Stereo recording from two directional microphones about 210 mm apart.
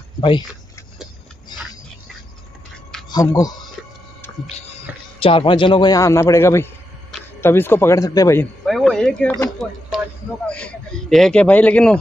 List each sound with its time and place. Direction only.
0.2 s speech: 20° left (ahead or behind)
1.5 s a sound: 20° left (ahead or behind)
3.1 s speech: 15° left (ahead or behind)
5.2 s a man's voice: 25° left (ahead or behind)
8.6 s a sound: centre (ahead or behind)
9.6 s a man's voice: centre (ahead or behind)